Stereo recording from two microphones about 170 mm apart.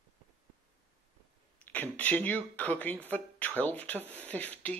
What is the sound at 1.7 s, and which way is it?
Speech, 10° left (ahead or behind).